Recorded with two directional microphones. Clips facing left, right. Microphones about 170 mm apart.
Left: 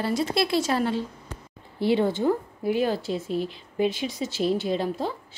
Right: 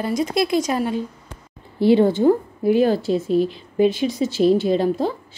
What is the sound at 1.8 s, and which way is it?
A woman's voice, 35° right (ahead or behind).